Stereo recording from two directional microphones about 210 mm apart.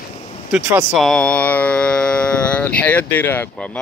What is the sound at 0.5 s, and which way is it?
Speech, centre (ahead or behind).